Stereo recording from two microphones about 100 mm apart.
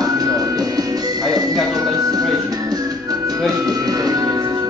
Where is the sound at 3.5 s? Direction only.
40° right (ahead or behind).